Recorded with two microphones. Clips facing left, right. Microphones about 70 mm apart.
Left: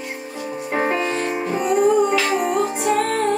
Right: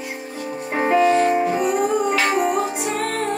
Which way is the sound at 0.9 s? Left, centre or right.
Centre.